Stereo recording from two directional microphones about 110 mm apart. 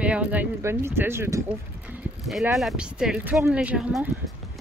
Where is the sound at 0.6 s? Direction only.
25° right (ahead or behind).